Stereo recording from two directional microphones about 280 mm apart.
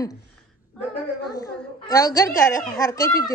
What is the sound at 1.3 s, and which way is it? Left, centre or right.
A child's voice, centre.